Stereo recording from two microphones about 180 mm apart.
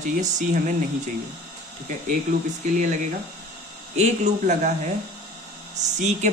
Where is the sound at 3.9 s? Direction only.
40° right (ahead or behind).